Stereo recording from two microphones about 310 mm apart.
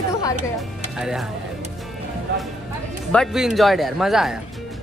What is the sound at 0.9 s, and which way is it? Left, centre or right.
Speech, centre.